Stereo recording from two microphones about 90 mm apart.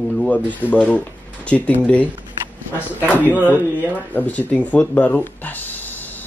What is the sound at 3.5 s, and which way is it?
Speech, 20° left (ahead or behind).